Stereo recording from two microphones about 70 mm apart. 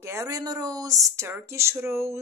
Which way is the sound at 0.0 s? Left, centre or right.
Right.